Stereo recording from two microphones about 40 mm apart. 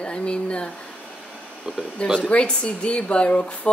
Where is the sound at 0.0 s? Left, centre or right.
Left.